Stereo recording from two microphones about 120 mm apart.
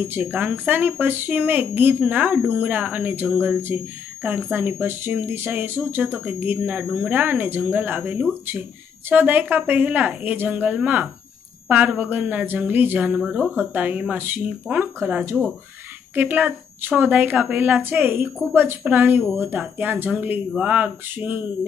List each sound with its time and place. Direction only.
0.0 s speech: 20° right (ahead or behind)